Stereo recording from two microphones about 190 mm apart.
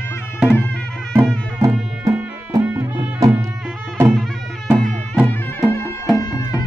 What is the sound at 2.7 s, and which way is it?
Music, 15° right (ahead or behind).